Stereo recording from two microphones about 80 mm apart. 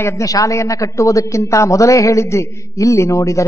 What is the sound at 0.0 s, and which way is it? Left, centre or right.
A man's voice, left.